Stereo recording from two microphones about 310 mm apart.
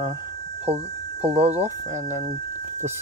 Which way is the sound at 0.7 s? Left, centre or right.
Centre.